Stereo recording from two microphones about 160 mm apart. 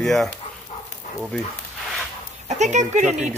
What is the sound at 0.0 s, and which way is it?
Speech, centre (ahead or behind).